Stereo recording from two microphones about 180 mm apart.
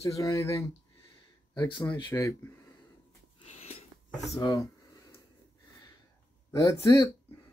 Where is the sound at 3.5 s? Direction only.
35° left (ahead or behind).